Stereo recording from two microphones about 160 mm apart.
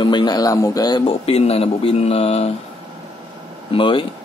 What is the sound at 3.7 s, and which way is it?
Speech, 30° left (ahead or behind).